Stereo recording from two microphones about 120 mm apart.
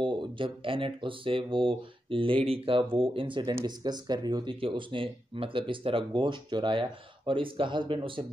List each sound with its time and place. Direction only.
0.0 s speech: 45° right (ahead or behind)